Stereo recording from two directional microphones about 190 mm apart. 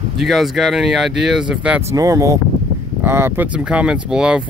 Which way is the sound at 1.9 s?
20° right (ahead or behind).